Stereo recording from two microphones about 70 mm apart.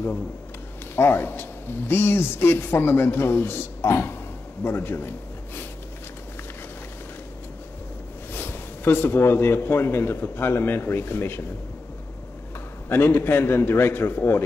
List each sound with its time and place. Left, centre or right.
0.9 s a man's voice: left
8.3 s speech: left
12.8 s speech: left